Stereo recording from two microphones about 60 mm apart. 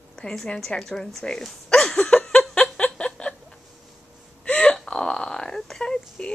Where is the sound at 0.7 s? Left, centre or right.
Centre.